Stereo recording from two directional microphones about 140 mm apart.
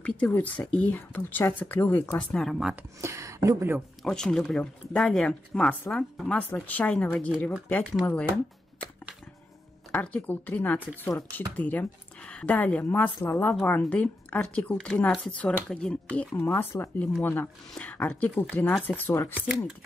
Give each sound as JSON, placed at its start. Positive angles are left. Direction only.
{"t": 0.0, "sound": "speech", "side_deg": 10}
{"t": 3.0, "sound": "speech", "side_deg": -20}
{"t": 4.0, "sound": "speech", "side_deg": 5}
{"t": 9.8, "sound": "speech", "side_deg": 10}